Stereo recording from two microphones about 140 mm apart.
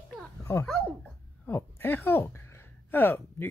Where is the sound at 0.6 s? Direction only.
15° left (ahead or behind).